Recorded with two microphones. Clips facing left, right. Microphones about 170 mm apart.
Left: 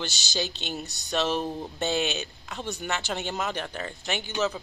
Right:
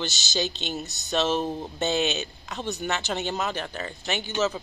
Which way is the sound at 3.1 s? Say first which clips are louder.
Right 2 dB; 10° left (ahead or behind).